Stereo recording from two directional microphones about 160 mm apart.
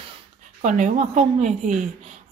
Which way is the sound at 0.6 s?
50° right (ahead or behind).